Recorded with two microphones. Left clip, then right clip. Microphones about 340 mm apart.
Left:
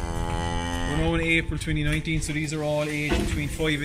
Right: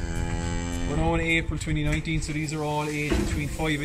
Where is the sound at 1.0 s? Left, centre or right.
Centre.